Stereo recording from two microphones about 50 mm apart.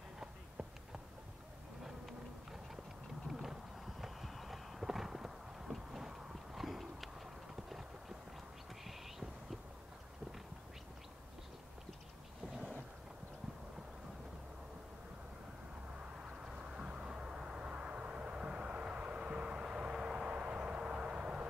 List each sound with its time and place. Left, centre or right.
1.9 s insect: centre
3.3 s clip-clop: centre
8.8 s a sound: centre
16.0 s vehicle: centre